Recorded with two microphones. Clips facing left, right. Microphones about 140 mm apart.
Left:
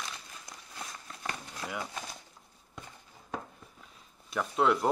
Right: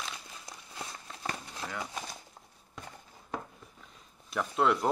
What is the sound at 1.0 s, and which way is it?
Walk, 25° right (ahead or behind).